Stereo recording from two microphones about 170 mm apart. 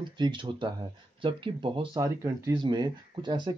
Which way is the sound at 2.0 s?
15° right (ahead or behind).